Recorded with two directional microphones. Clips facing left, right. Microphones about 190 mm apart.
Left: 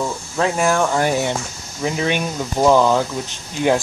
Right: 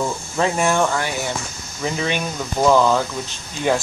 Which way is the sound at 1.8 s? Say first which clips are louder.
Left 3 dB; 10° left (ahead or behind).